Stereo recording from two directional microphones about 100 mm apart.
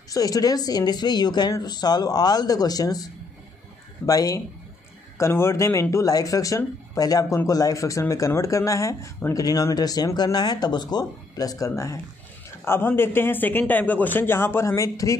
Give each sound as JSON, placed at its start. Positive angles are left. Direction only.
{"t": 0.1, "sound": "a man's voice", "side_deg": 40}